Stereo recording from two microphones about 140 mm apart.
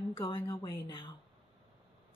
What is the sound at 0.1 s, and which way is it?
A woman's voice, 40° left (ahead or behind).